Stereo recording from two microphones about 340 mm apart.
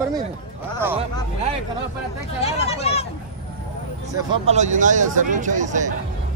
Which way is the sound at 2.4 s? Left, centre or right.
Centre.